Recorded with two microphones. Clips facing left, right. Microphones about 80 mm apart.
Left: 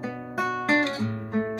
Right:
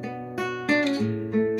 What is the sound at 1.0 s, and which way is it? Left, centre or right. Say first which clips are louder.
Music: right 4 dB; left.